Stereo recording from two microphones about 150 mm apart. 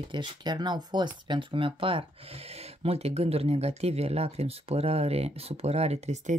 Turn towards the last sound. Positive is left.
turn(degrees=-50)  # may be behind; listen again after turning